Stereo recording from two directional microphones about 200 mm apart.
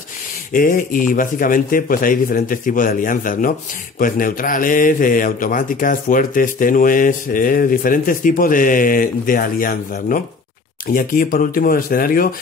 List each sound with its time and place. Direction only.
0.5 s speech: 40° left (ahead or behind)